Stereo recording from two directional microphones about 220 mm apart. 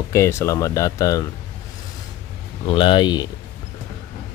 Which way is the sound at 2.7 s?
20° left (ahead or behind).